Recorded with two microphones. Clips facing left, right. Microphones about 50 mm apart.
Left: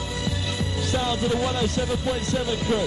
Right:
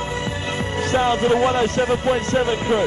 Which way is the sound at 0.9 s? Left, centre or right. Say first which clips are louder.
Right 7 dB; right.